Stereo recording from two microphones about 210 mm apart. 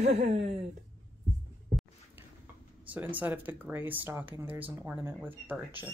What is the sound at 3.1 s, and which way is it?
Speech, 10° right (ahead or behind).